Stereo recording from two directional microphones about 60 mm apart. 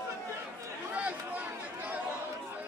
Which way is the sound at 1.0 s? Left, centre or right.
Right.